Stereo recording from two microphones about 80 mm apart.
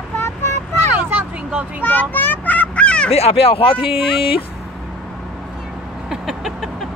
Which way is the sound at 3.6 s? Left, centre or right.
Left.